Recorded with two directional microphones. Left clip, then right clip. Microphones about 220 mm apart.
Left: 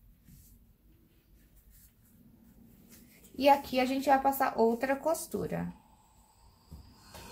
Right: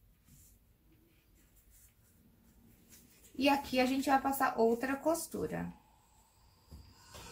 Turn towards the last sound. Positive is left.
turn(degrees=40)  # may be behind; listen again after turning